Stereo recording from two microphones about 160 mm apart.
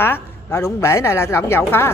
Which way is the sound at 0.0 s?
15° left (ahead or behind).